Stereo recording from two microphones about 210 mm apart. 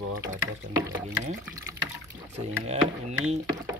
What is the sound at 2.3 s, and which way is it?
Speech, 30° right (ahead or behind).